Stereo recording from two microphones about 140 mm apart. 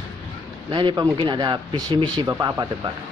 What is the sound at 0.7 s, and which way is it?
Speech, 35° right (ahead or behind).